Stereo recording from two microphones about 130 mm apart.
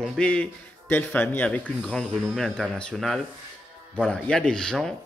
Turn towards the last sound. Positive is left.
turn(degrees=5)  # may be behind; listen again after turning